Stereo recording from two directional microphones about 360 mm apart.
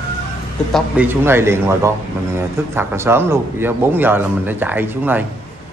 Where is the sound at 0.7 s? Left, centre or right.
Centre.